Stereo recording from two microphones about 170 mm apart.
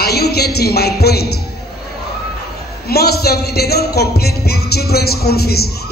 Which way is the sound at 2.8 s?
65° left (ahead or behind).